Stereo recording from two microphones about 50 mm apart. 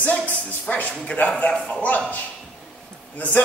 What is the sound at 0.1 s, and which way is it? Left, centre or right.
Speech, left.